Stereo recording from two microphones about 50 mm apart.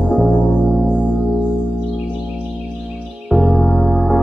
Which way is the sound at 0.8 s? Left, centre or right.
Right.